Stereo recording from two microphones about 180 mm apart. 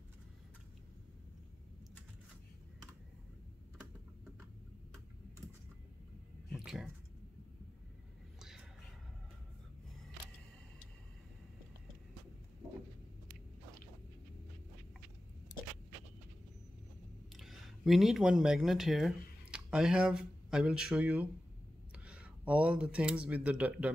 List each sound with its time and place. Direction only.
6.5 s a sound: 5° right (ahead or behind)
8.4 s whispering: centre (ahead or behind)
17.4 s speech: centre (ahead or behind)